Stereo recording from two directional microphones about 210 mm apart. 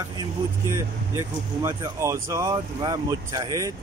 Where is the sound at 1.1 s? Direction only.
15° right (ahead or behind).